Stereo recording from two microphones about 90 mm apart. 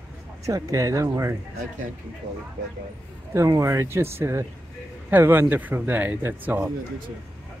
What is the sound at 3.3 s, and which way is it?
Speech, 35° right (ahead or behind).